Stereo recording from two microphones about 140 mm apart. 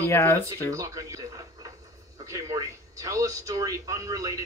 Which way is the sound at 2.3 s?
20° right (ahead or behind).